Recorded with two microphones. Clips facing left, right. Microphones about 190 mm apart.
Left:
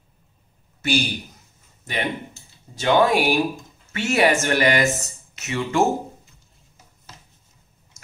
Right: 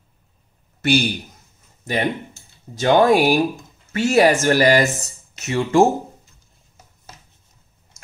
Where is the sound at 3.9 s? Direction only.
35° right (ahead or behind).